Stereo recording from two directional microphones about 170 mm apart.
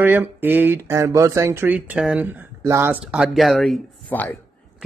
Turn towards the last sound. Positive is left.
turn(degrees=10)  # may be behind; listen again after turning